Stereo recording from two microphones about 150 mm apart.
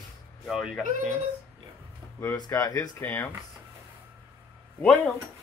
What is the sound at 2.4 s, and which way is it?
Speech, 20° left (ahead or behind).